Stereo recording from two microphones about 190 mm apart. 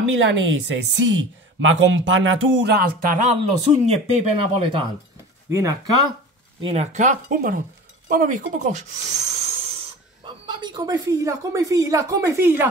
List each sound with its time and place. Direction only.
0.0 s a woman's voice: 85° right; by 3.3 s 50° right (ahead or behind)
3.8 s speech: 35° right (ahead or behind)
5.5 s speech: 15° right (ahead or behind)
6.6 s speech: 35° right (ahead or behind); by 12.6 s 10° right (ahead or behind)